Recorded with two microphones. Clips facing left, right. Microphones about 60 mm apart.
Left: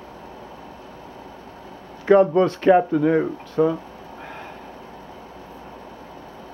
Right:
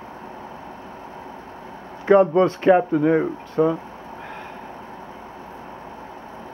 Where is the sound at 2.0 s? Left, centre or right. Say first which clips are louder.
Even; centre.